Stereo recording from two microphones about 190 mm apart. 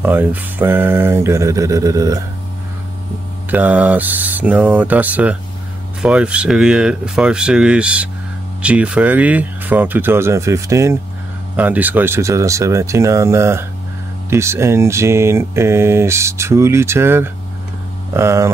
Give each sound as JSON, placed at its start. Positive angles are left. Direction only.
{"t": 0.0, "sound": "speech", "side_deg": -10}
{"t": 3.4, "sound": "speech", "side_deg": -10}